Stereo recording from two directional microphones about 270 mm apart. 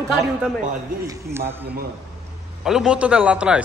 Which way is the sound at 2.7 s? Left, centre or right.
Centre.